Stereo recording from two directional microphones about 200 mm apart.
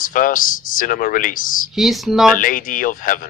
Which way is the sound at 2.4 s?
45° left (ahead or behind).